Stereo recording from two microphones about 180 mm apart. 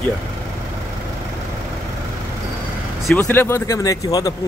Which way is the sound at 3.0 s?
10° left (ahead or behind).